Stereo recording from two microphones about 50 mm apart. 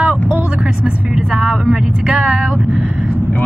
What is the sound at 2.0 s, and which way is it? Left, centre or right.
A woman's voice, right.